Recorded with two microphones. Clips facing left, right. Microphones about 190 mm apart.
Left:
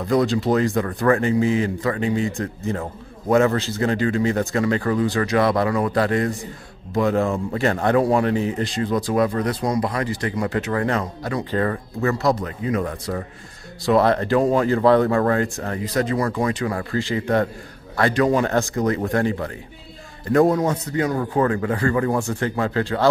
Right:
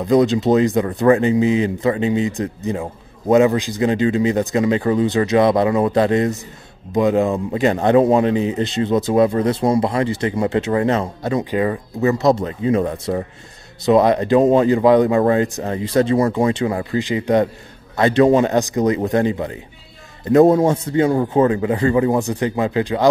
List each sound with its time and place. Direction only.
0.0 s speech: 20° right (ahead or behind)